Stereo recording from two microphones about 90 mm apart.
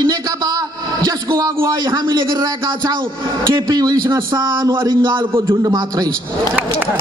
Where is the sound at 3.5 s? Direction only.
50° right (ahead or behind).